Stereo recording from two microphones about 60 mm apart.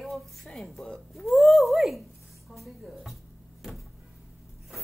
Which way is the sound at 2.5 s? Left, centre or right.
Centre.